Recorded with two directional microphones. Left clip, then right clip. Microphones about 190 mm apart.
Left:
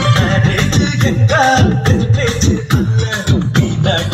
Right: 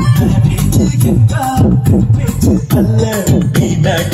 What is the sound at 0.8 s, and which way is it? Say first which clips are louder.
Music: right 1 dB; 55° right (ahead or behind).